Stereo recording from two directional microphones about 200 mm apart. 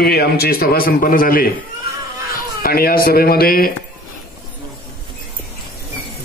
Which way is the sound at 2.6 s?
50° left (ahead or behind).